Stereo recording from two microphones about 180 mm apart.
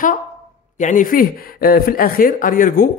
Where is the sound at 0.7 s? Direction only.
45° left (ahead or behind).